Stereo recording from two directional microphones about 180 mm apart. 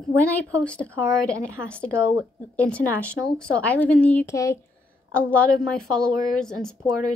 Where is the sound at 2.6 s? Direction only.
5° left (ahead or behind).